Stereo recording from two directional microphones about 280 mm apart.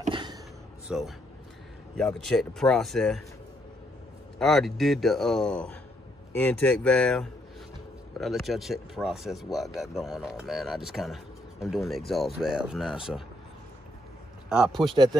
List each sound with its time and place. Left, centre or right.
0.0 s a sound: centre
0.8 s a man's voice: centre
4.4 s speech: centre
14.5 s speech: centre